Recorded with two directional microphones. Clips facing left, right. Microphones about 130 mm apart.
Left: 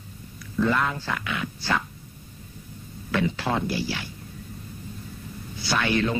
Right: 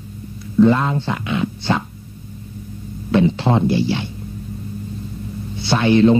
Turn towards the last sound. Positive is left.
turn(degrees=-25)  # may be behind; listen again after turning